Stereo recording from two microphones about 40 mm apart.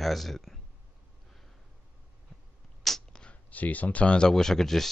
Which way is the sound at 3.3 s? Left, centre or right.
Left.